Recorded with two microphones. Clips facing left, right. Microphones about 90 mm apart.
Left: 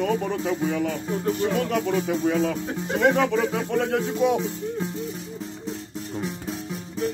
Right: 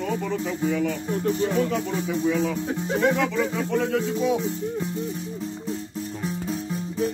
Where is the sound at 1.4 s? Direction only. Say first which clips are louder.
Even; 60° left (ahead or behind).